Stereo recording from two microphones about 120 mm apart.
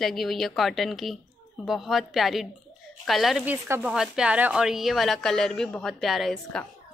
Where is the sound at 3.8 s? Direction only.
5° right (ahead or behind).